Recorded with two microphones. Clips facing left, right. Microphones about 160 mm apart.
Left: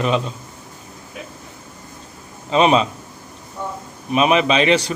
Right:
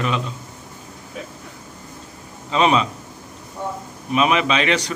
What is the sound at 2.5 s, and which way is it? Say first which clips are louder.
Speech: left 3 dB; 25° left (ahead or behind).